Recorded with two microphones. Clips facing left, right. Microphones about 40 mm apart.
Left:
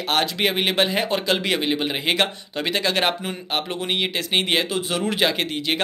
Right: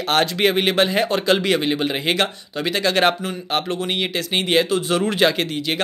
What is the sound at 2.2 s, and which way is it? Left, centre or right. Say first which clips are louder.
Speech: right 1 dB; centre.